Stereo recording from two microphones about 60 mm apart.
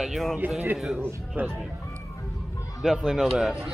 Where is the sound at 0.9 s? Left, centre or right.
Right.